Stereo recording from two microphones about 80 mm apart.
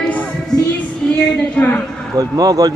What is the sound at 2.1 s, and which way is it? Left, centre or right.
Speech, right.